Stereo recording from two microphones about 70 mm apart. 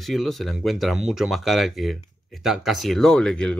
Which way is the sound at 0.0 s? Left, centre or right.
Centre.